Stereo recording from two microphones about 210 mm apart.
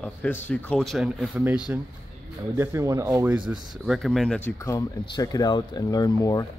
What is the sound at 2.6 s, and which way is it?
Speech, 15° right (ahead or behind).